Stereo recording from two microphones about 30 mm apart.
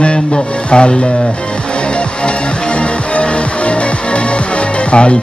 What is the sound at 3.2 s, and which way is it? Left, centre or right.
Music, left.